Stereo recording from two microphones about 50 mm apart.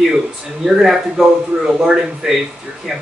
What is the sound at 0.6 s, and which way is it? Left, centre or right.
Speech, centre.